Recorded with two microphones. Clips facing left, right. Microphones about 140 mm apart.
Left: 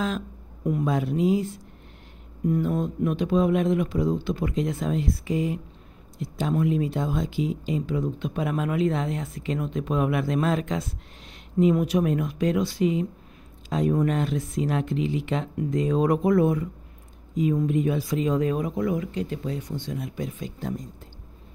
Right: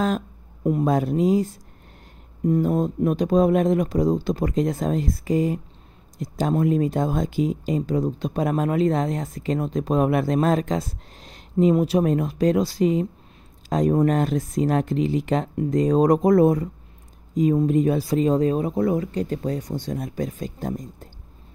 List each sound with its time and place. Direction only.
0.7 s speech: 35° right (ahead or behind)